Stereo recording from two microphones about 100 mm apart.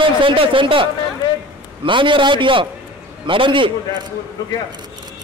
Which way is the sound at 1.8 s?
55° right (ahead or behind).